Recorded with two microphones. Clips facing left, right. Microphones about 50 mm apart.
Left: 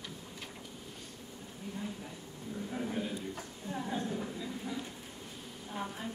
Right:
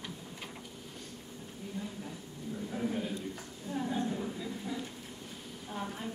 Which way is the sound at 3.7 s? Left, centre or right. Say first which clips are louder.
Right 3 dB; left.